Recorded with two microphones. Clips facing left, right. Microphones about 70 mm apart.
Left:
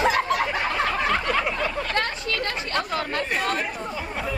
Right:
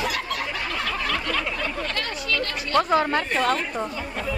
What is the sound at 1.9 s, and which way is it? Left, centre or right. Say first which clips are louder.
Speech: left 1 dB; left.